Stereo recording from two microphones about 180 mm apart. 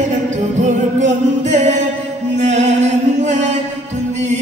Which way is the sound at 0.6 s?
40° right (ahead or behind).